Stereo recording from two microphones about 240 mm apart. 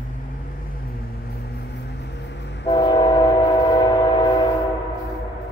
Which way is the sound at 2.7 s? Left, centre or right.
Centre.